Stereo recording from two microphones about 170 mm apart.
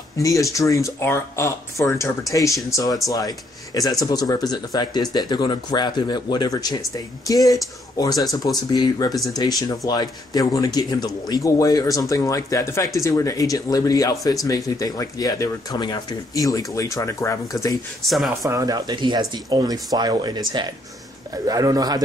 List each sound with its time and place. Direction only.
0.2 s speech: 20° left (ahead or behind)
18.0 s speech: centre (ahead or behind)
18.4 s speech: 20° right (ahead or behind)